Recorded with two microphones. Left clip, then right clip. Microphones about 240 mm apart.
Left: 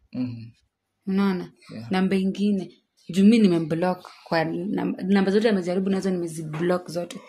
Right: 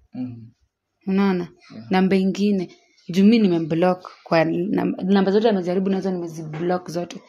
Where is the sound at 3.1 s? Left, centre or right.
Centre.